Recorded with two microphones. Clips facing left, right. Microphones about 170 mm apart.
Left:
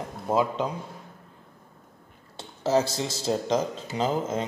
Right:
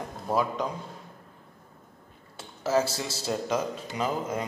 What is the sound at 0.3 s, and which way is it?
Speech, 20° left (ahead or behind).